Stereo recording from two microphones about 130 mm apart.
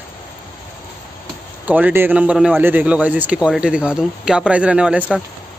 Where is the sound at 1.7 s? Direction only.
10° right (ahead or behind).